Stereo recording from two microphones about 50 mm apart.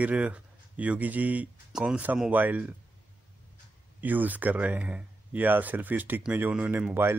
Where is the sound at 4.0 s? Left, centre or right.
Right.